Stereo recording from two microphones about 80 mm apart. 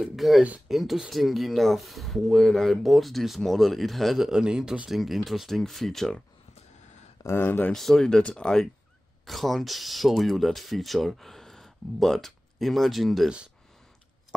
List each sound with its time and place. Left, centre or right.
0.0 s speech: centre
7.2 s speech: left
7.7 s speech: centre